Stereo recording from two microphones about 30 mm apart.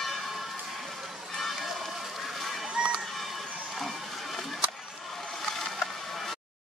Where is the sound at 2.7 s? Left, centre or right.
Right.